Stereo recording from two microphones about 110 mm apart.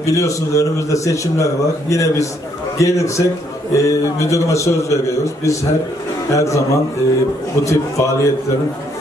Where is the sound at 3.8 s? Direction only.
30° left (ahead or behind).